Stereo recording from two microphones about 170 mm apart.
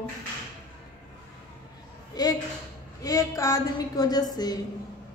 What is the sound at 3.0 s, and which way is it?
A woman's voice, 20° left (ahead or behind).